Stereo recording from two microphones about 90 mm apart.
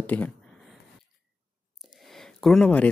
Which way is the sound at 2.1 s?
5° left (ahead or behind).